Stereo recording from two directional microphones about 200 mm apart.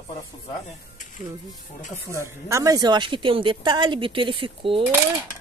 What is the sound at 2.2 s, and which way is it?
A woman's voice, 15° right (ahead or behind).